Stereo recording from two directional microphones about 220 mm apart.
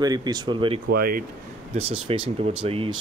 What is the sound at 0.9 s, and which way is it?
Speech, 40° right (ahead or behind).